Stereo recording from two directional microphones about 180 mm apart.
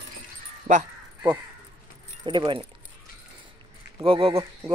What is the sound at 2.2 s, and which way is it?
Speech, 25° right (ahead or behind).